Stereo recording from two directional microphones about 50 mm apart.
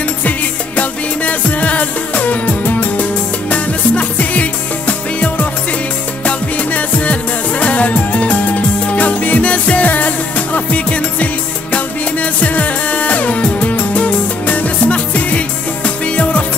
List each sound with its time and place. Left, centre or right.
0.7 s music: left